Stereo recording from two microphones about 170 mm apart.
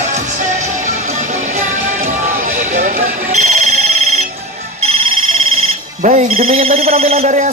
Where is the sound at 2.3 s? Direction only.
45° right (ahead or behind).